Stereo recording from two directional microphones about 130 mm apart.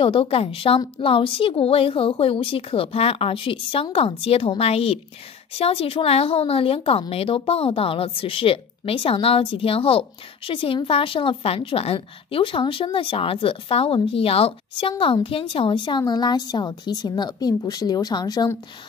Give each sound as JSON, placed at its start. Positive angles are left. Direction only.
{"t": 0.0, "sound": "a woman's voice", "side_deg": 45}